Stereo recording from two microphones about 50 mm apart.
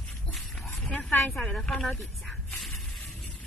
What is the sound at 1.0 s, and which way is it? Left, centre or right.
Speech, centre.